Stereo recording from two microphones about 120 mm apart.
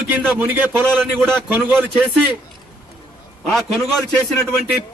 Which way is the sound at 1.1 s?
5° left (ahead or behind).